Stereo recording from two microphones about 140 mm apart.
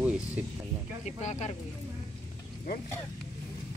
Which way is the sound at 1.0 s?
55° left (ahead or behind).